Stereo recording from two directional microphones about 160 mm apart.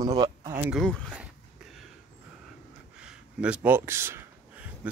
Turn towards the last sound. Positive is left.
turn(degrees=-10)  # may be behind; listen again after turning